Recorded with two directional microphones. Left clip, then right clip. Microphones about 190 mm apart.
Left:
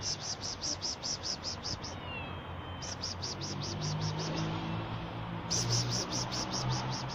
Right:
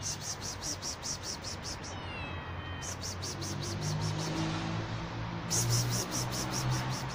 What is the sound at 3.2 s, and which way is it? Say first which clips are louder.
Music: even; 5° right (ahead or behind).